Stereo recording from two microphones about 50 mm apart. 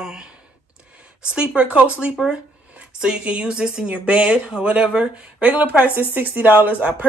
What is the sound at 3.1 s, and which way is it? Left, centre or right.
Speech, right.